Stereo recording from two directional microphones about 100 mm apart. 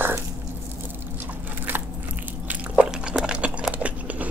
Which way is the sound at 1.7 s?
20° right (ahead or behind).